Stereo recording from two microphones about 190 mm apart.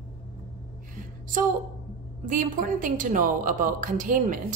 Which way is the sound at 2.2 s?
45° right (ahead or behind).